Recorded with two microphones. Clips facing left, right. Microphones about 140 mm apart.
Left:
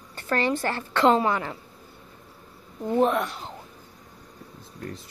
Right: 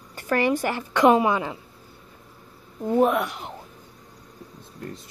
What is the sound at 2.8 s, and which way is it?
Speech, 10° right (ahead or behind).